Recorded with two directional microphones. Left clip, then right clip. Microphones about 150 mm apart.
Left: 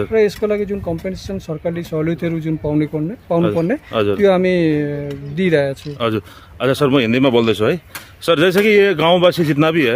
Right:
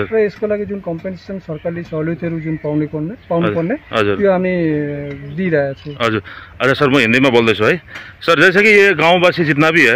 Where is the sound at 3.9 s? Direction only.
15° left (ahead or behind).